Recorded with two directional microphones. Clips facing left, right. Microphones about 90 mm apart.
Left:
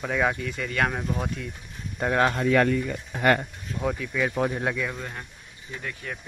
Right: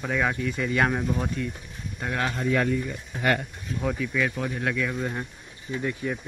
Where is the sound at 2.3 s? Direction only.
75° left (ahead or behind).